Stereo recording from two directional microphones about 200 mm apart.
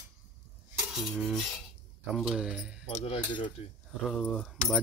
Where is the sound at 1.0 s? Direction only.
5° left (ahead or behind).